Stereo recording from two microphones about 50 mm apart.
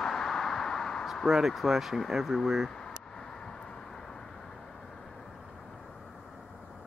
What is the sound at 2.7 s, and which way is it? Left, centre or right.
Vehicle, centre.